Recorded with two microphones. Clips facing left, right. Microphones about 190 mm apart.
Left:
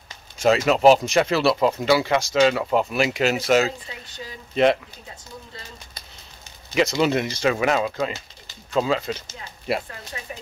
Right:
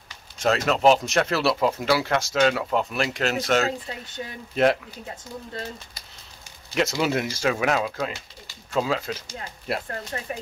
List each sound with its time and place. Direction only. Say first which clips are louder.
0.4 s speech: left 4 dB; 5° left (ahead or behind)
6.7 s speech: left 3 dB; 5° right (ahead or behind)
10.1 s speech: right 2 dB; 55° right (ahead or behind)